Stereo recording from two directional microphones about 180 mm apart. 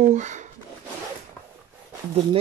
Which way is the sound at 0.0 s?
40° right (ahead or behind).